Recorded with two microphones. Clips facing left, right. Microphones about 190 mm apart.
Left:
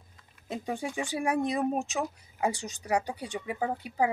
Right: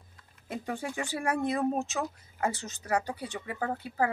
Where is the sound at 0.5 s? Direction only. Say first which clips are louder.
Left 1 dB; 15° left (ahead or behind).